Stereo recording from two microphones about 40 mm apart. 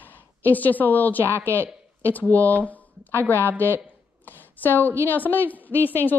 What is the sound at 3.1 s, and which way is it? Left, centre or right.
A woman's voice, left.